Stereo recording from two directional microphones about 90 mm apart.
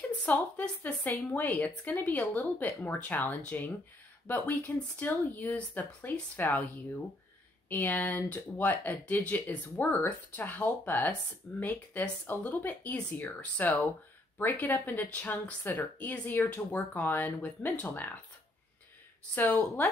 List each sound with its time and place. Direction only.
0.2 s a woman's voice: 15° left (ahead or behind)
7.7 s a woman's voice: 20° left (ahead or behind)
19.3 s a woman's voice: 20° left (ahead or behind)